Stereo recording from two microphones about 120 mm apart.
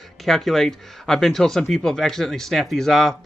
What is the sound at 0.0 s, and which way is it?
Speech, centre (ahead or behind).